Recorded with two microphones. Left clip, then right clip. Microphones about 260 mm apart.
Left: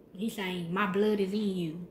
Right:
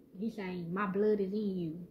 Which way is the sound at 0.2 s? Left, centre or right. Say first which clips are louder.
Left 5 dB; centre.